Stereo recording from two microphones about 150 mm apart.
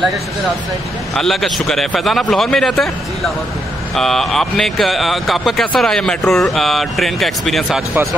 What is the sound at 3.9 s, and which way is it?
A man's voice, centre (ahead or behind).